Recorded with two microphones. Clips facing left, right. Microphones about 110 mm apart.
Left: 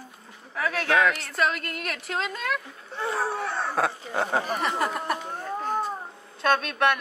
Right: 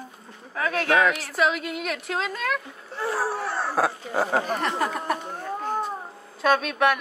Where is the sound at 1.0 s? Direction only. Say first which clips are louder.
Right 2 dB; centre (ahead or behind).